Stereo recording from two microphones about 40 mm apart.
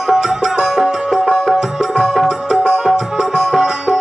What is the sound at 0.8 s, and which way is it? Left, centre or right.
Music, centre.